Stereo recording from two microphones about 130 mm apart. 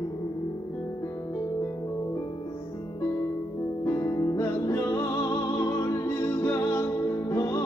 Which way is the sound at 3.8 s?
20° left (ahead or behind).